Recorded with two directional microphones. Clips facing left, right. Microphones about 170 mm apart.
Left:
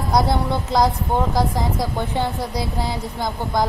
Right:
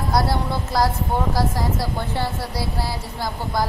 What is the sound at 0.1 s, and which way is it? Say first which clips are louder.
A woman's voice: left 3 dB; 20° left (ahead or behind).